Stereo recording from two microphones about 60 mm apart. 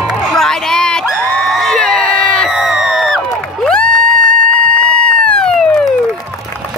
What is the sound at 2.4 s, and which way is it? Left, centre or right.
Crowd, centre.